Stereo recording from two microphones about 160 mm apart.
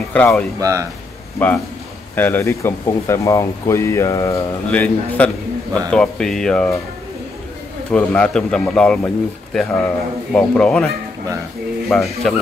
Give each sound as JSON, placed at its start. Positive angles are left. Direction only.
{"t": 0.1, "sound": "speech", "side_deg": 10}
{"t": 0.6, "sound": "speech", "side_deg": -20}
{"t": 1.4, "sound": "speech", "side_deg": 10}
{"t": 4.6, "sound": "speech", "side_deg": 10}
{"t": 7.9, "sound": "speech", "side_deg": 5}
{"t": 11.9, "sound": "speech", "side_deg": 0}